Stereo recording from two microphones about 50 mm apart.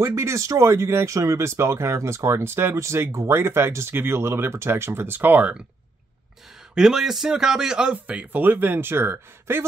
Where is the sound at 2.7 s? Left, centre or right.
Right.